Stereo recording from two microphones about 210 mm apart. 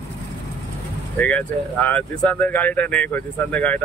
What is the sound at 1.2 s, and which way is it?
Speech, 5° left (ahead or behind).